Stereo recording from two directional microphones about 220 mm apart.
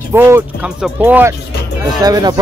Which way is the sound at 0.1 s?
10° right (ahead or behind).